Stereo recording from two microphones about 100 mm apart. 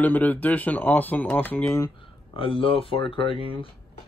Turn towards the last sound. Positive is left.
turn(degrees=65)  # may be behind; listen again after turning